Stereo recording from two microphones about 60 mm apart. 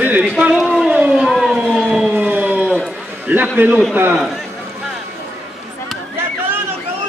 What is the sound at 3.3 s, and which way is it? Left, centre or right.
Speech, right.